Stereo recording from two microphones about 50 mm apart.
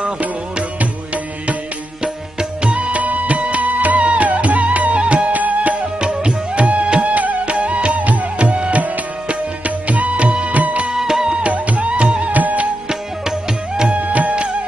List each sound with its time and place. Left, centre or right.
0.0 s music: right
2.6 s music: right
9.8 s music: right
11.0 s music: centre; by 12.6 s right
13.9 s music: right